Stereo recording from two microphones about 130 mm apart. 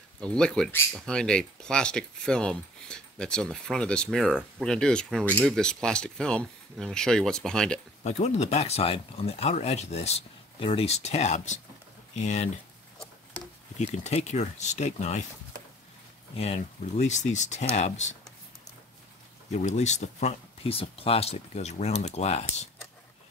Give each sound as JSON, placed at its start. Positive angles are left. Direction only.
{"t": 0.2, "sound": "speech", "side_deg": 5}
{"t": 8.0, "sound": "speech", "side_deg": 60}
{"t": 13.9, "sound": "speech", "side_deg": 60}
{"t": 16.3, "sound": "speech", "side_deg": 50}
{"t": 19.5, "sound": "speech", "side_deg": 60}